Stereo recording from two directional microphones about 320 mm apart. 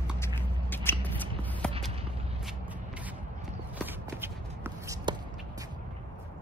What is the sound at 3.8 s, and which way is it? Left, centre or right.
Shuffle, centre.